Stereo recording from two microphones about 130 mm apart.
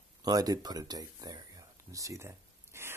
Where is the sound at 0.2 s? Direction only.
30° right (ahead or behind).